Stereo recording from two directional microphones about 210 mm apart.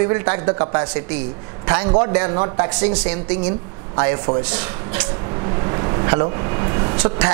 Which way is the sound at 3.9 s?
20° right (ahead or behind).